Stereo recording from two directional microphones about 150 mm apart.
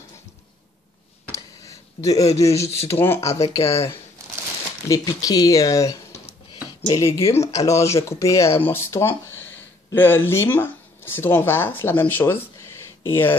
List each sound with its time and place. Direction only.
1.3 s a sound: 20° left (ahead or behind)
2.7 s speech: 15° left (ahead or behind)
4.8 s speech: 20° left (ahead or behind)